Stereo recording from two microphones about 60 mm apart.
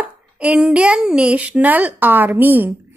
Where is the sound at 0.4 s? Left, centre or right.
Centre.